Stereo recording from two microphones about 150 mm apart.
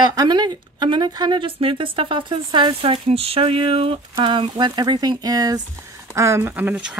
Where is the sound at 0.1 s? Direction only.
25° right (ahead or behind).